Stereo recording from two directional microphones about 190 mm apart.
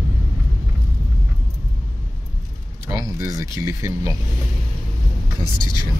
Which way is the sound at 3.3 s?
15° right (ahead or behind).